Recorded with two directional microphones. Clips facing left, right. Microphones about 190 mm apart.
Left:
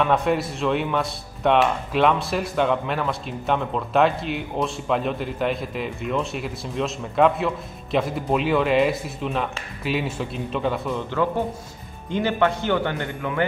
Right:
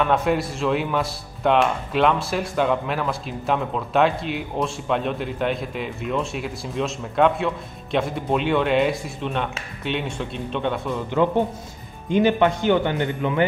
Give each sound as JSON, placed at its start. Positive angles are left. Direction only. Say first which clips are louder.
{"t": 0.0, "sound": "speech", "louder": "even", "side_deg": 0}
{"t": 12.1, "sound": "speech", "louder": "right 4 dB", "side_deg": -15}